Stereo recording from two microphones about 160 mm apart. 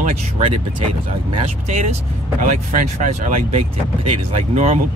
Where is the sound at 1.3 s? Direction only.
40° right (ahead or behind).